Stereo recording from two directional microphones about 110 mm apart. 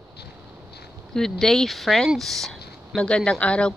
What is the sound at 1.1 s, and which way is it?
Speech, 5° left (ahead or behind).